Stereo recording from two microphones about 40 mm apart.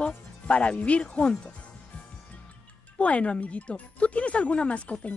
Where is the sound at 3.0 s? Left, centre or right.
Left.